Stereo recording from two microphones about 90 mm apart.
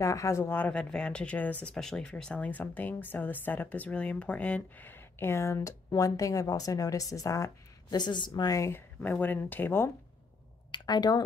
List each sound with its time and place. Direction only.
0.0 s speech: 35° left (ahead or behind)
0.7 s speech: 10° left (ahead or behind); by 8.0 s 35° left (ahead or behind)
8.0 s speech: 60° left (ahead or behind)
8.5 s speech: 35° left (ahead or behind)
8.7 s speech: 20° left (ahead or behind)
10.7 s speech: 55° left (ahead or behind)